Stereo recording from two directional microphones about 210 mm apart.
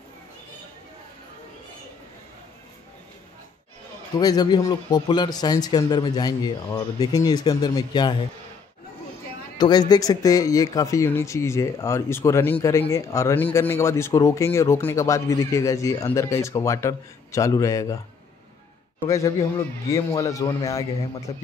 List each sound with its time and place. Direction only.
4.2 s a man's voice: 20° left (ahead or behind)
9.6 s speech: 20° left (ahead or behind)
19.0 s speech: 15° left (ahead or behind)